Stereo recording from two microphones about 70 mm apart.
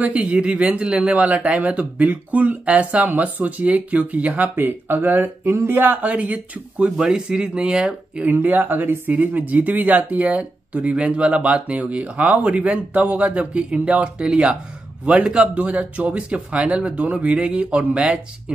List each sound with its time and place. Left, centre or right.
0.0 s speech: centre
8.2 s speech: right